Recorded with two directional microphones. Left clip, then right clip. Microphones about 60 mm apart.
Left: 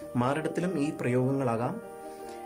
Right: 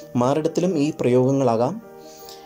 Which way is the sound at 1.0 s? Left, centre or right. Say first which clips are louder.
Right 12 dB; right.